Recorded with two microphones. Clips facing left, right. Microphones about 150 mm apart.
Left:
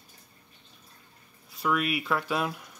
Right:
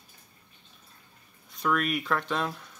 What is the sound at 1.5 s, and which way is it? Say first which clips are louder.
Speech: even; 5° left (ahead or behind).